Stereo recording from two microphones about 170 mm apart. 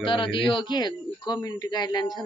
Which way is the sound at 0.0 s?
30° left (ahead or behind).